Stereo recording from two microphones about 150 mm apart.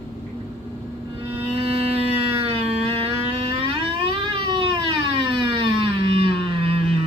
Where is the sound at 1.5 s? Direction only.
40° right (ahead or behind).